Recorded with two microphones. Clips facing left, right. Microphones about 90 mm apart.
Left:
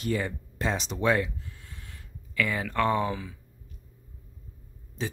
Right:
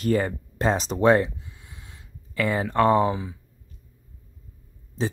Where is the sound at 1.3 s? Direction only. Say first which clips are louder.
Even; 20° right (ahead or behind).